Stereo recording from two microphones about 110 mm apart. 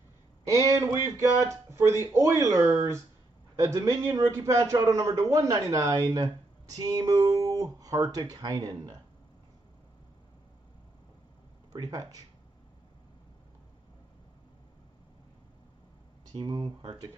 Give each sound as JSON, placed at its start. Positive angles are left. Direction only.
{"t": 0.5, "sound": "a sound", "side_deg": -30}
{"t": 1.0, "sound": "a man's voice", "side_deg": -25}
{"t": 11.7, "sound": "speech", "side_deg": -35}
{"t": 16.4, "sound": "speech", "side_deg": -40}